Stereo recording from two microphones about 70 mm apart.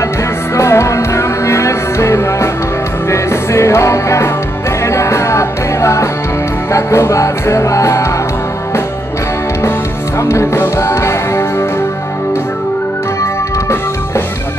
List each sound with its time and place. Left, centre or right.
0.6 s music: left
9.6 s music: left
13.2 s music: left